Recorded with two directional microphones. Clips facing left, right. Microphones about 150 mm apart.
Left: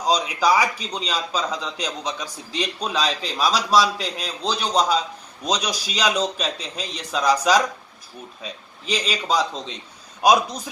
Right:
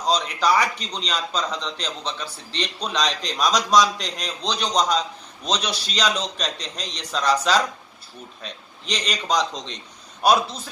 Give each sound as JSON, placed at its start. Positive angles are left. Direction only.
{"t": 0.0, "sound": "a man's voice", "side_deg": 10}